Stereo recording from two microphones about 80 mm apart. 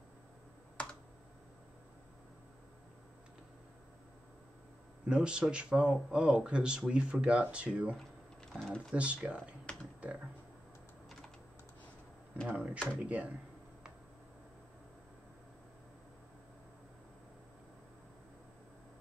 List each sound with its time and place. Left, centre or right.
5.0 s speech: centre
8.5 s typing: centre
8.9 s speech: centre
12.4 s speech: centre